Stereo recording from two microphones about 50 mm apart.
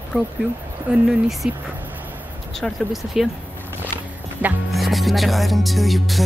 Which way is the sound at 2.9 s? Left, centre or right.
Centre.